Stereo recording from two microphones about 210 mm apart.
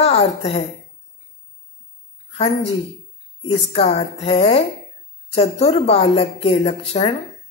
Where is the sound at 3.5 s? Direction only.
25° left (ahead or behind).